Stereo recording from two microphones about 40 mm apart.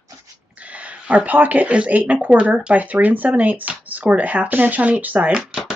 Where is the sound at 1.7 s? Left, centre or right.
Right.